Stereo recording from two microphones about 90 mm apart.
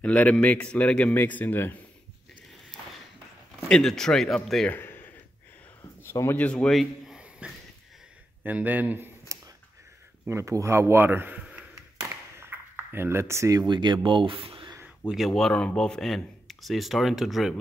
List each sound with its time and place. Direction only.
0.0 s a man's voice: 10° left (ahead or behind)
3.6 s speech: 5° left (ahead or behind)
4.7 s a sound: 25° left (ahead or behind)
6.3 s a man's voice: 15° left (ahead or behind)
7.2 s a sound: 10° right (ahead or behind)
8.5 s speech: 20° right (ahead or behind)
10.3 s speech: 35° right (ahead or behind)
12.4 s a sound: 25° right (ahead or behind)
13.7 s speech: 60° right (ahead or behind); by 14.7 s 80° right
15.0 s speech: centre (ahead or behind)